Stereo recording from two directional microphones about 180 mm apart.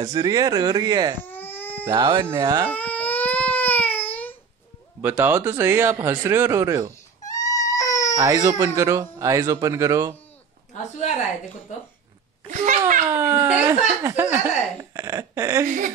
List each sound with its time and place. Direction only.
0.1 s speech: 20° right (ahead or behind)
1.2 s baby cry: 10° left (ahead or behind)
1.9 s speech: 25° right (ahead or behind)
2.7 s crying: 10° left (ahead or behind)
5.0 s speech: 10° right (ahead or behind)
7.2 s crying: 20° left (ahead or behind)
8.2 s speech: 20° right (ahead or behind)
10.7 s speech: 40° left (ahead or behind)
12.4 s a child's voice: 45° right (ahead or behind)
13.2 s speech: 10° right (ahead or behind)
15.6 s a child's voice: 45° right (ahead or behind)